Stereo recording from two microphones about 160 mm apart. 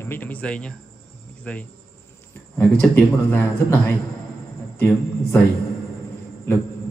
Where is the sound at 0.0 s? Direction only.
10° left (ahead or behind).